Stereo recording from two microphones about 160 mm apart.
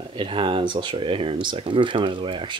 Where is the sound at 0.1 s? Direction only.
35° right (ahead or behind).